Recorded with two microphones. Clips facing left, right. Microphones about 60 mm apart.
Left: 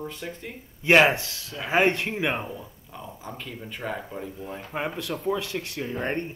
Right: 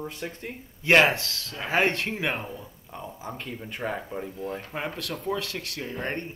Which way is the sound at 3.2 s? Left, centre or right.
Centre.